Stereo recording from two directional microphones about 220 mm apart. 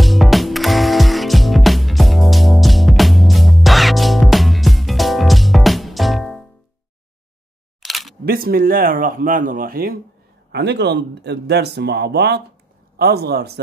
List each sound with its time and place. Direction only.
0.0 s music: centre (ahead or behind)
7.8 s single-lens reflex camera: centre (ahead or behind)
8.3 s speech: 40° right (ahead or behind)